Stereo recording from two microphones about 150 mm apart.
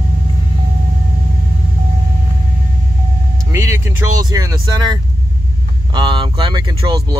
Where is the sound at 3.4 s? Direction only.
20° right (ahead or behind).